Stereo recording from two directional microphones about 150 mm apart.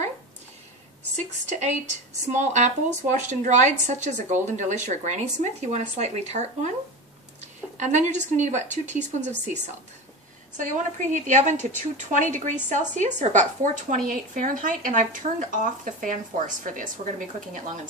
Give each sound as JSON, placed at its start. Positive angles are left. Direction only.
{"t": 1.1, "sound": "speech", "side_deg": -55}
{"t": 7.7, "sound": "speech", "side_deg": -50}
{"t": 10.6, "sound": "speech", "side_deg": -60}